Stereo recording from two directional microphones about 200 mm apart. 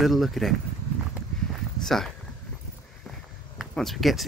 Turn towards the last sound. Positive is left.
turn(degrees=0)  # may be behind; listen again after turning